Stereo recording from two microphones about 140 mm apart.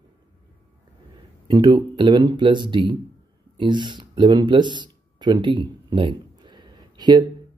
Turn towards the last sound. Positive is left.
turn(degrees=-30)  # may be behind; listen again after turning